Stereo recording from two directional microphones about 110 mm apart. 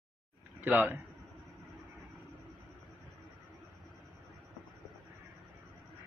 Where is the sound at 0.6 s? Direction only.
15° right (ahead or behind).